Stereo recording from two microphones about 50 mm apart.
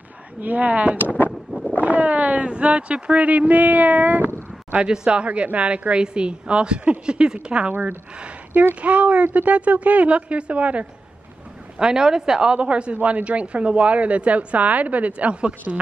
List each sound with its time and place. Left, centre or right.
0.4 s speech: right
4.7 s a woman's voice: centre
8.8 s a woman's voice: right
11.8 s a woman's voice: centre